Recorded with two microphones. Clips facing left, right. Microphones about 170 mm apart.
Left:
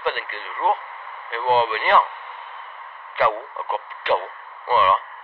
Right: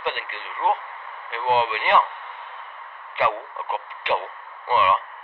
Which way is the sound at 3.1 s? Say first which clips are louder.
Left 3 dB; 20° right (ahead or behind).